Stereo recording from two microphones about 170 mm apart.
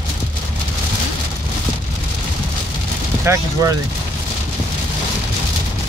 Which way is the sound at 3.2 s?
15° right (ahead or behind).